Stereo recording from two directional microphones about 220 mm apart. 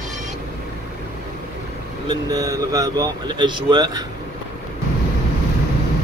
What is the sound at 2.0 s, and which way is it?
Speech, 15° right (ahead or behind).